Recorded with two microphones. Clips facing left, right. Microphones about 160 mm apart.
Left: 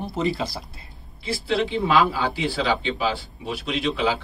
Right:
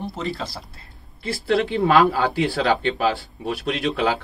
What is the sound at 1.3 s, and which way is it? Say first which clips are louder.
Speech: right 3 dB; 50° right (ahead or behind).